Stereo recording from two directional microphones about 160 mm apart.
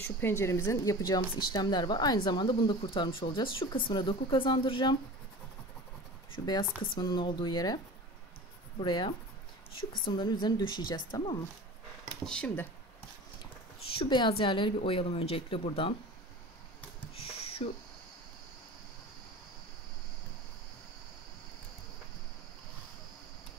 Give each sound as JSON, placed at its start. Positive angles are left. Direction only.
{"t": 0.0, "sound": "a woman's voice", "side_deg": 15}
{"t": 6.3, "sound": "a woman's voice", "side_deg": 25}
{"t": 8.8, "sound": "a woman's voice", "side_deg": 30}
{"t": 12.3, "sound": "speech", "side_deg": 5}
{"t": 13.9, "sound": "speech", "side_deg": 30}
{"t": 17.0, "sound": "a sound", "side_deg": 35}